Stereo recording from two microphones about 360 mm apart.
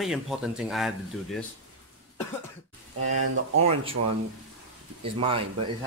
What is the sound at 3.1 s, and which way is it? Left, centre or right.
Speech, right.